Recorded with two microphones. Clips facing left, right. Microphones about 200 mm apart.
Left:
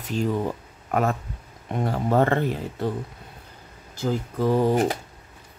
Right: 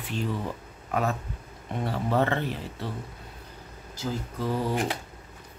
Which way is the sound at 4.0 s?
50° left (ahead or behind).